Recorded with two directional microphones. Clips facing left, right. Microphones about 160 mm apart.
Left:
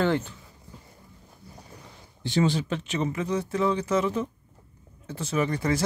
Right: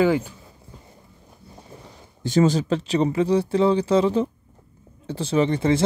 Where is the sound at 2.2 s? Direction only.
45° right (ahead or behind).